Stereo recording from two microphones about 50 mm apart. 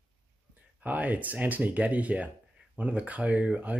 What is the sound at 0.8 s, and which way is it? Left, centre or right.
Speech, right.